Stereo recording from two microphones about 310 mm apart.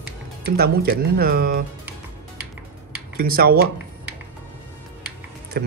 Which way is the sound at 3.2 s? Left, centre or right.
Right.